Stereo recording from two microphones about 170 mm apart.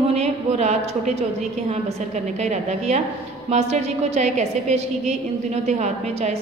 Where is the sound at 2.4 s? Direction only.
40° right (ahead or behind).